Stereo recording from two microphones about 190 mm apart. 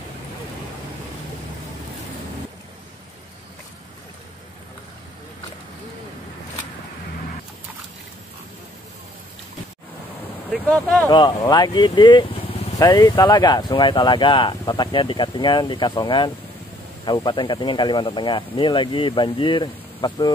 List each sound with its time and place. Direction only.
10.5 s speech: centre (ahead or behind)
11.1 s speech: 20° left (ahead or behind)